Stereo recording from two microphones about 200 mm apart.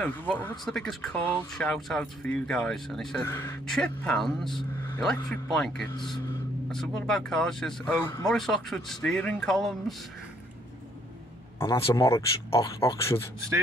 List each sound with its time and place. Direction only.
0.0 s speech: 10° left (ahead or behind)
11.6 s speech: 25° left (ahead or behind)